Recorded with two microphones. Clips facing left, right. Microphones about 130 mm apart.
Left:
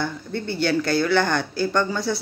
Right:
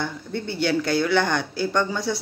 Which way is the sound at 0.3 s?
15° right (ahead or behind).